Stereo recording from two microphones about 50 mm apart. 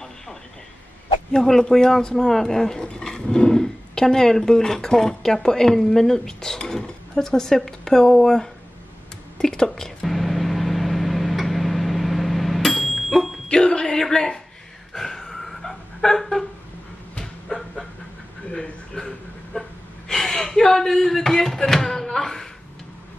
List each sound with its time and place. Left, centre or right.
1.3 s speech: centre
9.4 s whispering: centre
13.5 s a sound: centre
17.5 s dog: centre
18.5 s a sound: centre
20.1 s speech: centre